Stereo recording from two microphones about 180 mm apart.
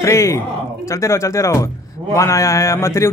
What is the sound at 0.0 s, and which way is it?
Speech, 15° left (ahead or behind).